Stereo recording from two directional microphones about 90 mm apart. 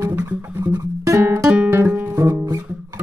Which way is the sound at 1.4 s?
10° right (ahead or behind).